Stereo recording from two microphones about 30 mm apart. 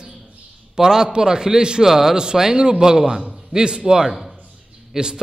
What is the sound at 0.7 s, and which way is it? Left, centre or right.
A man's voice, centre.